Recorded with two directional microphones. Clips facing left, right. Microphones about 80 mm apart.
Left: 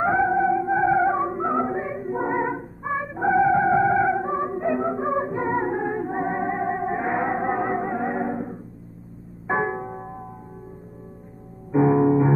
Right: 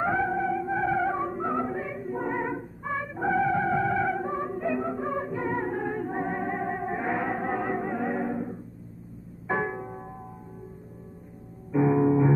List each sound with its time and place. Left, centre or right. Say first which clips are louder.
0.0 s music: left 6 dB; left
11.7 s music: left 4 dB; left